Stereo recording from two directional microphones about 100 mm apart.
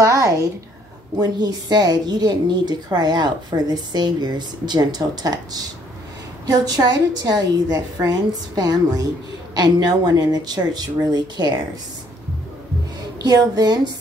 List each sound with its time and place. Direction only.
0.0 s a sound: 30° right (ahead or behind)
1.1 s a woman's voice: 45° right (ahead or behind)
13.2 s a woman's voice: 40° right (ahead or behind)